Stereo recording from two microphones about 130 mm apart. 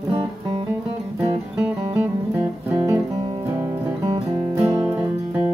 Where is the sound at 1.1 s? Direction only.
10° right (ahead or behind).